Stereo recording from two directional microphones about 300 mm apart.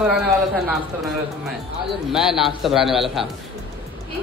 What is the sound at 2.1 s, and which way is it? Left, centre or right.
Speech, centre.